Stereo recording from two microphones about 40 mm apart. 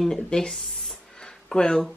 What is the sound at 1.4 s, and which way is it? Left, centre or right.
Speech, centre.